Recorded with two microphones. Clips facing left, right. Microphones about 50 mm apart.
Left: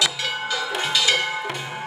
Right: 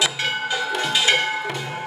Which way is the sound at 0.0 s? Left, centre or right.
Right.